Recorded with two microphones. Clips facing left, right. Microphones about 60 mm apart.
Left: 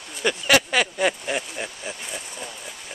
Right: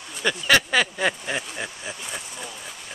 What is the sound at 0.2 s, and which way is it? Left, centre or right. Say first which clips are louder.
Speech: even; centre.